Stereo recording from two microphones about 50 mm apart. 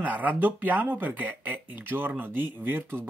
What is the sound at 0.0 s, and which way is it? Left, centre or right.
Speech, right.